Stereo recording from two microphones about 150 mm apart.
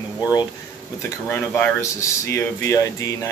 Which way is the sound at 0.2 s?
25° left (ahead or behind).